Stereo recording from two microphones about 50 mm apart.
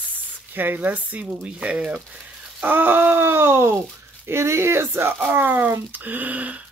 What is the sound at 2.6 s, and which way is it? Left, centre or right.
Speech, right.